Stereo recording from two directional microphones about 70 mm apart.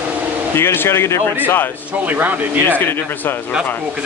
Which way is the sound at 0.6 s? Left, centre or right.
Left.